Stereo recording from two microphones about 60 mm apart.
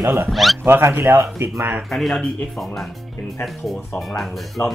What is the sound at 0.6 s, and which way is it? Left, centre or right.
Speech, right.